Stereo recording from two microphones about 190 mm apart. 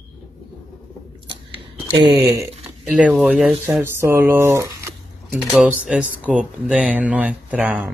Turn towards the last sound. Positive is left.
turn(degrees=-5)  # may be behind; listen again after turning